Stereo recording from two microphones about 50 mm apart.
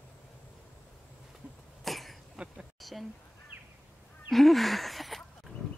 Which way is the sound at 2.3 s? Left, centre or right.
Right.